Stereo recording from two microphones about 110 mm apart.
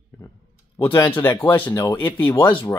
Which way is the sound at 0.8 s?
20° left (ahead or behind).